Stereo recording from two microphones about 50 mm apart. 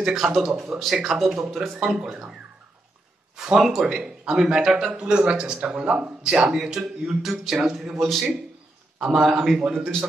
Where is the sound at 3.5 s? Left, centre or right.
Centre.